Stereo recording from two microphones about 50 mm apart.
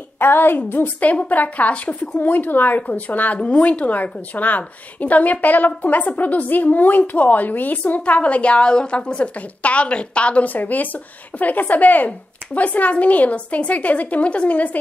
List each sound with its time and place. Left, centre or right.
0.2 s a woman's voice: left
3.3 s a woman's voice: left